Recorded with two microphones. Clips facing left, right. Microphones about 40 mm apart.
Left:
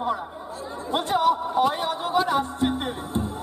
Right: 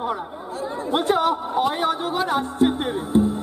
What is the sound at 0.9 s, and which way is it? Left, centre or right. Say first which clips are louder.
Speech: right 1 dB; centre.